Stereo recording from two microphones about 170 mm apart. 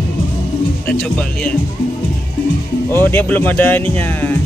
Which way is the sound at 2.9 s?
10° left (ahead or behind).